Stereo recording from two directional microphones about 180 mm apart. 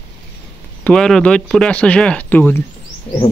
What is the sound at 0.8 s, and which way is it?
Speech, 5° left (ahead or behind).